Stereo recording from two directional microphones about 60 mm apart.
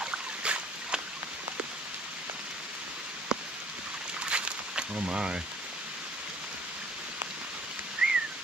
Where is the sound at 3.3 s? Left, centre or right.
Centre.